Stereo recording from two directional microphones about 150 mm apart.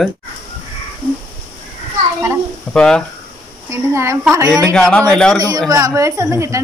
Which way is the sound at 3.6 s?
20° right (ahead or behind).